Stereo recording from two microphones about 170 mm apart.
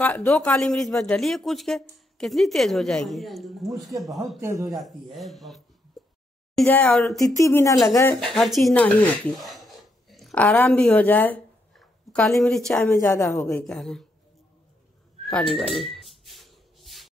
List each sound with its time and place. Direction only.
0.0 s speech: 10° left (ahead or behind)
4.4 s speech: 15° right (ahead or behind)
4.6 s speech: centre (ahead or behind)
6.0 s a sound: centre (ahead or behind)
6.5 s speech: 5° left (ahead or behind)
7.2 s a woman's voice: 20° left (ahead or behind)
8.3 s speech: centre (ahead or behind)
12.7 s a woman's voice: 15° left (ahead or behind)
15.2 s a sound: centre (ahead or behind)